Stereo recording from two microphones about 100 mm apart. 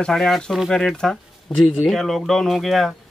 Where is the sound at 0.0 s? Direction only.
5° left (ahead or behind).